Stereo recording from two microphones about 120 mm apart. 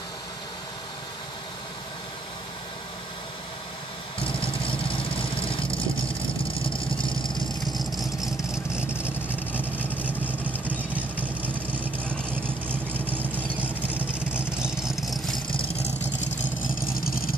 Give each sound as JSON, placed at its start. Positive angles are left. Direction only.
{"t": 4.2, "sound": "vehicle", "side_deg": 45}
{"t": 7.6, "sound": "vehicle", "side_deg": 0}
{"t": 9.5, "sound": "vehicle", "side_deg": 15}
{"t": 9.8, "sound": "vehicle", "side_deg": -15}
{"t": 15.3, "sound": "vehicle", "side_deg": 50}
{"t": 16.3, "sound": "vehicle", "side_deg": 90}